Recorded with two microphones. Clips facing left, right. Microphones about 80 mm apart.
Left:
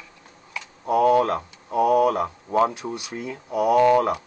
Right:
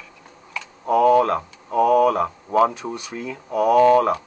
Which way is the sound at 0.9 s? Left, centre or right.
Centre.